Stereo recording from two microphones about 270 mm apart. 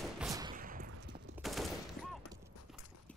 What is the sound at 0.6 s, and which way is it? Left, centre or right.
Fusillade, right.